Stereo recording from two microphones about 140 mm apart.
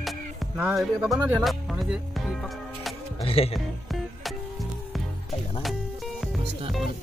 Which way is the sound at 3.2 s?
45° left (ahead or behind).